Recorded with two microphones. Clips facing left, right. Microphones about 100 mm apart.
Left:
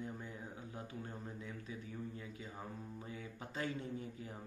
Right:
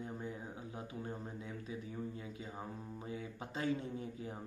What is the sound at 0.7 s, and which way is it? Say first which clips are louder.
Speech: right 4 dB; 20° right (ahead or behind).